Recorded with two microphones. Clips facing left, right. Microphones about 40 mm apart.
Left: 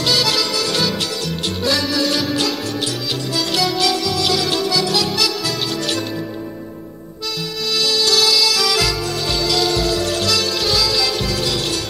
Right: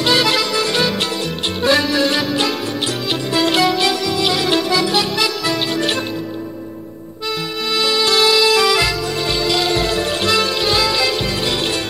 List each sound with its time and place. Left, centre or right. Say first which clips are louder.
0.0 s music: right 3 dB; right
0.9 s music: right 2 dB; right
7.2 s music: right 3 dB; right
8.6 s music: right 3 dB; centre